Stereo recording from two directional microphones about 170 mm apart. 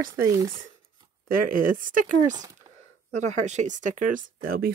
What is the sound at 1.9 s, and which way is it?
Speech, 50° right (ahead or behind).